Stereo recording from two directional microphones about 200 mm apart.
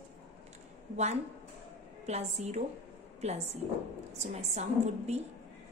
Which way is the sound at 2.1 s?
35° right (ahead or behind).